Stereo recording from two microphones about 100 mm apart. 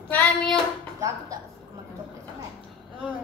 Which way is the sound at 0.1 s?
15° left (ahead or behind).